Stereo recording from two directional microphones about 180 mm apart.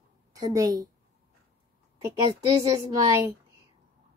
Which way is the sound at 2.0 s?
20° right (ahead or behind).